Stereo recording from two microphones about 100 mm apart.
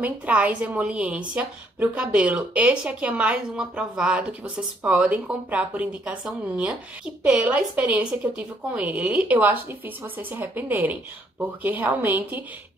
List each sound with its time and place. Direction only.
0.0 s a woman's voice: 15° right (ahead or behind)